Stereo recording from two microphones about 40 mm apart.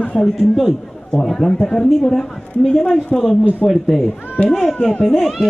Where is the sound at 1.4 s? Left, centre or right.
Centre.